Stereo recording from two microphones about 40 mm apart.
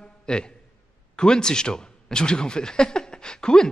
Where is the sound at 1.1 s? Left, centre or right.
Centre.